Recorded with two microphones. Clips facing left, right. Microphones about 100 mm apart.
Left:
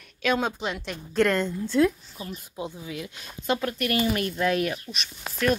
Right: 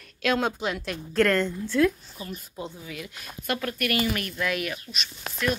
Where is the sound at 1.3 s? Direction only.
25° left (ahead or behind).